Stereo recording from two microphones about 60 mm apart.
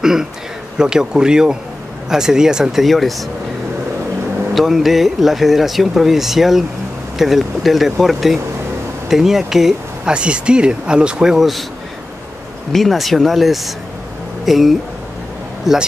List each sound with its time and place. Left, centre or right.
0.0 s a man's voice: centre
4.6 s speech: centre
10.1 s speech: centre
11.3 s speech: centre
12.7 s speech: centre